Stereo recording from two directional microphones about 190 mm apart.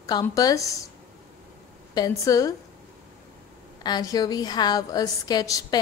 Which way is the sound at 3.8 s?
20° left (ahead or behind).